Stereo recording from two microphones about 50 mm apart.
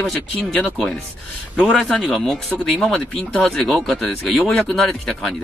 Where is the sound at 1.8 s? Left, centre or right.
Centre.